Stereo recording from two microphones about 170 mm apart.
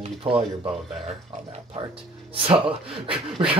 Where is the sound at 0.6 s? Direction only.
Centre (ahead or behind).